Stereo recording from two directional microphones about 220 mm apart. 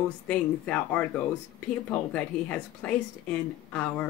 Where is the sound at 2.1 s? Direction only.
5° left (ahead or behind).